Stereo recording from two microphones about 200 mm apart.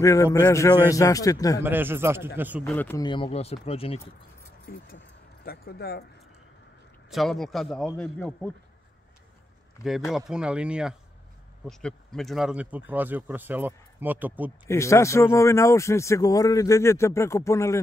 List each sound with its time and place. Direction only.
0.0 s a man's voice: 15° left (ahead or behind)
1.6 s speech: 10° right (ahead or behind)
2.6 s a man's voice: 10° left (ahead or behind)
3.0 s speech: 25° left (ahead or behind)
4.6 s speech: 50° left (ahead or behind)
7.1 s a man's voice: centre (ahead or behind)
9.8 s speech: centre (ahead or behind)
14.7 s a man's voice: 15° left (ahead or behind)